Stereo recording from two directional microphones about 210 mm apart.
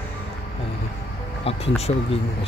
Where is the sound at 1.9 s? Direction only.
30° left (ahead or behind).